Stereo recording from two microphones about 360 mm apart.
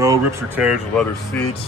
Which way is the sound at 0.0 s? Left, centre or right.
Centre.